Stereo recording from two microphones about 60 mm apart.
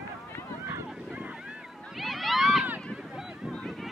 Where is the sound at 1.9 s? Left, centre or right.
Centre.